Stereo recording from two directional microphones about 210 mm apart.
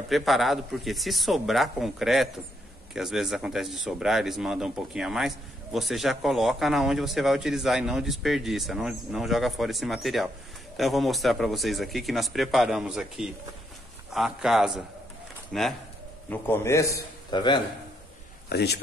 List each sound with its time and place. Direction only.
0.1 s speech: centre (ahead or behind)
16.3 s a man's voice: 10° left (ahead or behind)
18.5 s speech: 50° left (ahead or behind)